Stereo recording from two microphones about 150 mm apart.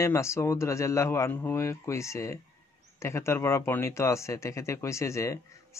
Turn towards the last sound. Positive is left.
turn(degrees=20)  # may be behind; listen again after turning